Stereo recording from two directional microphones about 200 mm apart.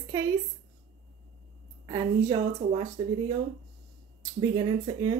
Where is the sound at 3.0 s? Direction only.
25° right (ahead or behind).